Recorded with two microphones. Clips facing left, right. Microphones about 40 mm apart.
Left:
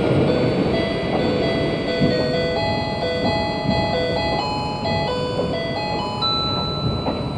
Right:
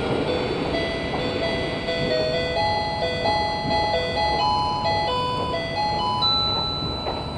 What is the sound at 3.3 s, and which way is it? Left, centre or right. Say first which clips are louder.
Music: left 1 dB; centre.